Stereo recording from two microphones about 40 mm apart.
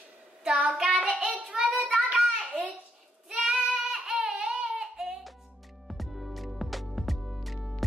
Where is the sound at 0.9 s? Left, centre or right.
Right.